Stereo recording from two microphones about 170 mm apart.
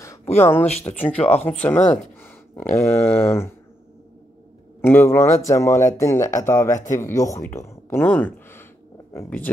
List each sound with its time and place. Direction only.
0.4 s speech: 15° left (ahead or behind)
0.7 s speech: 40° left (ahead or behind)
0.9 s speech: 10° left (ahead or behind)
2.2 s a sound: 15° left (ahead or behind)
3.1 s speech: 15° left (ahead or behind)
4.8 s speech: 15° left (ahead or behind)